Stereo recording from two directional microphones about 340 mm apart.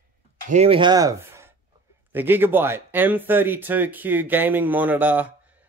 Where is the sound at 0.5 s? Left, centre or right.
Centre.